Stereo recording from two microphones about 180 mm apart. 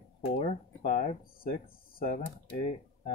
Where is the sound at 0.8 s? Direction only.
45° left (ahead or behind).